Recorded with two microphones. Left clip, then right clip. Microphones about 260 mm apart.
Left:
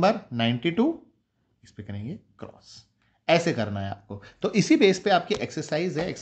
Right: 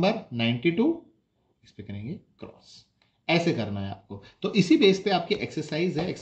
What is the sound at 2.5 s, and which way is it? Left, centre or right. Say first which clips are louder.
Speech: left 2 dB; centre.